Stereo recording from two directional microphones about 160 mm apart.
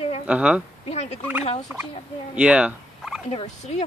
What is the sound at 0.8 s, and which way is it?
Speech, 45° left (ahead or behind).